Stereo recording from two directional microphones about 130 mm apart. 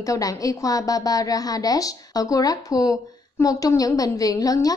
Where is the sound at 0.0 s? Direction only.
25° left (ahead or behind).